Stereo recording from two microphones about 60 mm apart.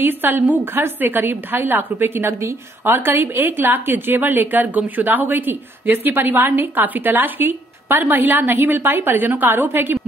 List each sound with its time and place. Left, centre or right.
0.0 s a woman's voice: right